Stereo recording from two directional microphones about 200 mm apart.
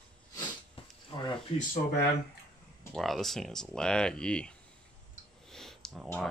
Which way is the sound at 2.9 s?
Centre (ahead or behind).